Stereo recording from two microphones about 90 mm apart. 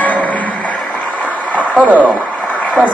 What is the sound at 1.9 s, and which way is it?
Speech, 15° right (ahead or behind).